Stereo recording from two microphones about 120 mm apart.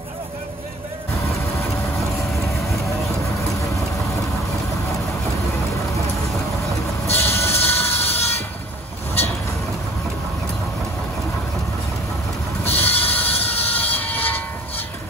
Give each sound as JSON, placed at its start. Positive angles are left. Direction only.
{"t": 7.1, "sound": "train", "side_deg": 20}
{"t": 12.6, "sound": "train", "side_deg": 15}